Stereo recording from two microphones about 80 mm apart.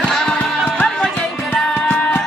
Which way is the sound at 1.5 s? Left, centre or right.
Centre.